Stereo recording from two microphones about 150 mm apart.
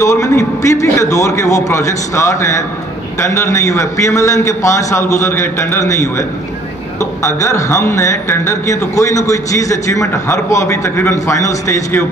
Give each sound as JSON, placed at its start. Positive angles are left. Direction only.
{"t": 0.0, "sound": "speech", "side_deg": 20}